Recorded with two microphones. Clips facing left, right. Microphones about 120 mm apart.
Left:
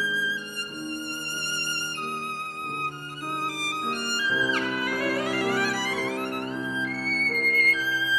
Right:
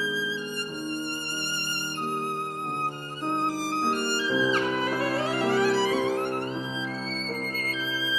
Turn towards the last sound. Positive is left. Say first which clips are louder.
# left 3 dB
turn(degrees=-25)  # may be behind; listen again after turning